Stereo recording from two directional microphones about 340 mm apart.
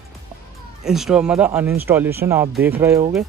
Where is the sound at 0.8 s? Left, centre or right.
Centre.